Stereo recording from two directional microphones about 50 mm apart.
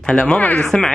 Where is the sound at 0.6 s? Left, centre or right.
Centre.